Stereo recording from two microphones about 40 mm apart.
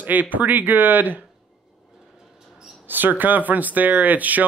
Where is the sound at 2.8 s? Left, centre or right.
Right.